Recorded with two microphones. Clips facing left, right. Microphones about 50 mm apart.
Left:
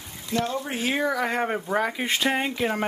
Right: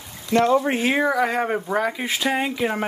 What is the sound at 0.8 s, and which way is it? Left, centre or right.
Speech, right.